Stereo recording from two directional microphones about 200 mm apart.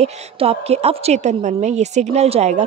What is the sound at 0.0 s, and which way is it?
A woman's voice, 30° right (ahead or behind).